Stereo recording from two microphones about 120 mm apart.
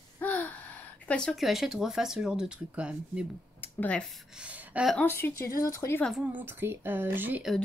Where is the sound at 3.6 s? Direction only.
10° left (ahead or behind).